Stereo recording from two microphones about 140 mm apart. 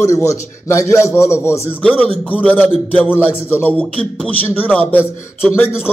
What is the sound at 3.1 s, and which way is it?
A man's voice, 15° left (ahead or behind).